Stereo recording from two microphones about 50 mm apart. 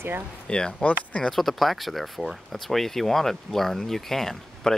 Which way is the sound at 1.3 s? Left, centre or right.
Centre.